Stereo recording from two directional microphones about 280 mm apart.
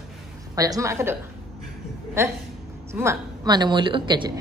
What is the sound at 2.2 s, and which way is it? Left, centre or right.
A woman's voice, centre.